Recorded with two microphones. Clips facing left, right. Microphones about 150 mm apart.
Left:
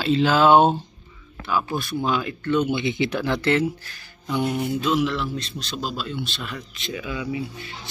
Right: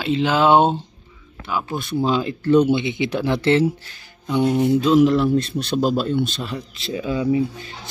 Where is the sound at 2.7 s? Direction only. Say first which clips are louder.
Right 2 dB; 20° right (ahead or behind); by 5.2 s 40° right (ahead or behind).